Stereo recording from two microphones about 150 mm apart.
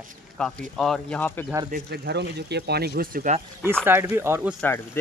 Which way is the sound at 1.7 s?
90° right.